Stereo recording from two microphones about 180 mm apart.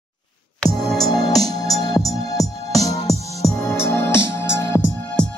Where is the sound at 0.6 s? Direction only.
Centre (ahead or behind).